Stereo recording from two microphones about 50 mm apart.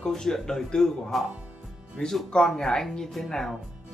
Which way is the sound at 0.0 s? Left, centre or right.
Centre.